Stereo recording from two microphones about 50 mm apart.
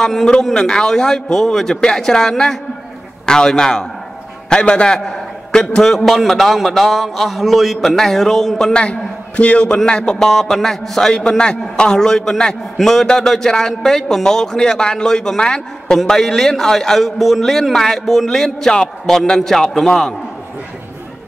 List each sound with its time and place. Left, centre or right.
0.0 s a man's voice: centre
5.9 s a man's voice: centre
8.7 s a man's voice: left